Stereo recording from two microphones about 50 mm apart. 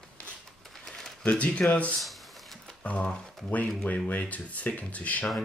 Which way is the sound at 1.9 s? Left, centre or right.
Centre.